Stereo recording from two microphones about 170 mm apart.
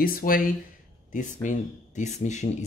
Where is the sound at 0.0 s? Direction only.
55° left (ahead or behind).